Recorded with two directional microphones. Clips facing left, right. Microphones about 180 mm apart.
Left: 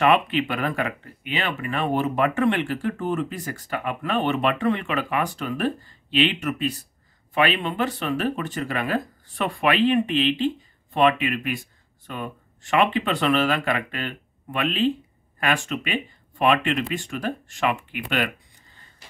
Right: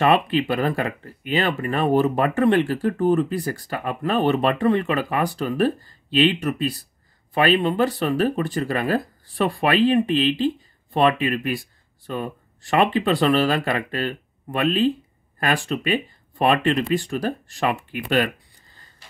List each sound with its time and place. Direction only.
0.0 s speech: 35° right (ahead or behind)